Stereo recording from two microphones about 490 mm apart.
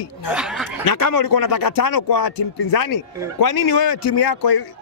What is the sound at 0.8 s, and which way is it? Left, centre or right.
Speech, left.